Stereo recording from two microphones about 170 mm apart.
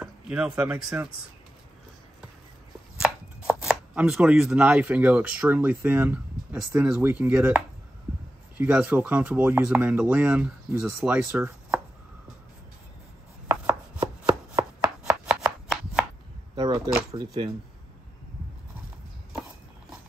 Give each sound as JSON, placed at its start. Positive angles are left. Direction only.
{"t": 0.0, "sound": "speech", "side_deg": -5}
{"t": 3.0, "sound": "chopping", "side_deg": -5}
{"t": 8.5, "sound": "speech", "side_deg": -10}
{"t": 11.0, "sound": "chopping", "side_deg": -10}
{"t": 13.5, "sound": "chopping", "side_deg": -10}
{"t": 16.5, "sound": "camera", "side_deg": -25}
{"t": 17.1, "sound": "speech", "side_deg": -20}